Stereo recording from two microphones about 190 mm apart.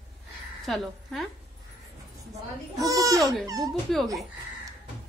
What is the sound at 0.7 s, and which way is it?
Speech, centre (ahead or behind).